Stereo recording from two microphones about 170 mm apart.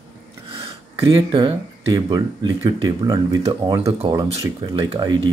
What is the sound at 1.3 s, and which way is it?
Speech, 30° right (ahead or behind).